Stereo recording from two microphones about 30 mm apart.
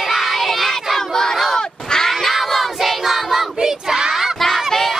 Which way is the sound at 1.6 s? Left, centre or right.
Left.